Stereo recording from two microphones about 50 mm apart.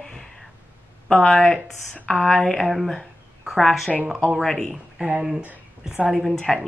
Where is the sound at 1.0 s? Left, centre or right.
Centre.